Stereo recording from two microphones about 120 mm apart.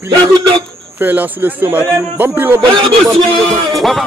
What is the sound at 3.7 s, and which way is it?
Music, centre (ahead or behind).